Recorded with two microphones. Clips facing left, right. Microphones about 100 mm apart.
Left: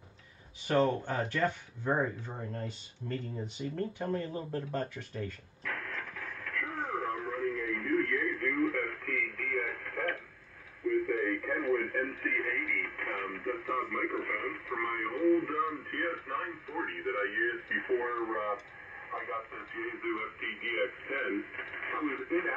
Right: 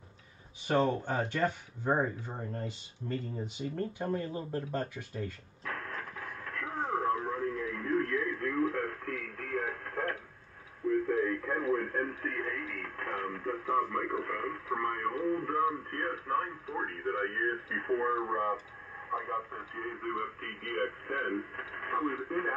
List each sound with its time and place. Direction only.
0.7 s speech: 15° right (ahead or behind)
5.6 s radio: 30° right (ahead or behind)
5.9 s a sound: 30° right (ahead or behind)
6.6 s radio: 25° right (ahead or behind)
17.2 s speech: 30° right (ahead or behind)